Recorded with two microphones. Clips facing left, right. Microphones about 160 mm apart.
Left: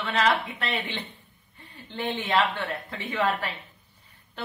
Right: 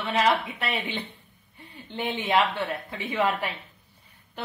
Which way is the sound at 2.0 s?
15° right (ahead or behind).